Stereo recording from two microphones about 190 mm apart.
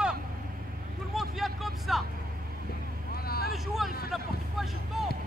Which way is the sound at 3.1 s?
55° left (ahead or behind).